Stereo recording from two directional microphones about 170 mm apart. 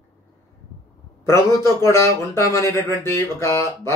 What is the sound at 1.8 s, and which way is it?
Speech, 15° left (ahead or behind).